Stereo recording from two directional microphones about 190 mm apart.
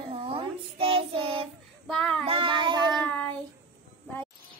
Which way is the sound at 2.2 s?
30° right (ahead or behind).